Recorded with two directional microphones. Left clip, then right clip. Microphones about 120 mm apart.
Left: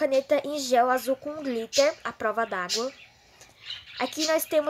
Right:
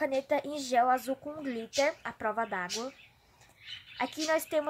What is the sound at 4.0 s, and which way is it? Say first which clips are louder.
Speech: left 4 dB; 15° left (ahead or behind).